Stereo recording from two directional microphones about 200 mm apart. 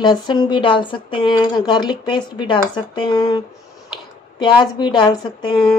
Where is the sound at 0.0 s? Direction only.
20° left (ahead or behind).